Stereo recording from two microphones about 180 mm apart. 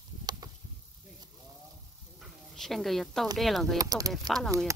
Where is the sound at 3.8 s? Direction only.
20° right (ahead or behind).